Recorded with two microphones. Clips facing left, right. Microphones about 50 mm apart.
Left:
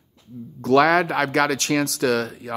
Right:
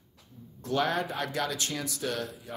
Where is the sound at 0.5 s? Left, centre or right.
Left.